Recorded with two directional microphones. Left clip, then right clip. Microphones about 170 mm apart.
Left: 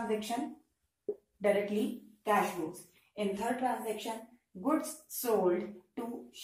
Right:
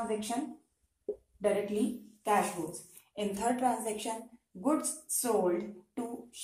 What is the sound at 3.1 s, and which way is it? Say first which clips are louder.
Speech: right 2 dB; 30° right (ahead or behind).